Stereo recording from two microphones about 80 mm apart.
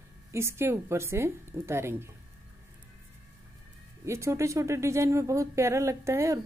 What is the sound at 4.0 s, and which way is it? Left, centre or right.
A woman's voice, right.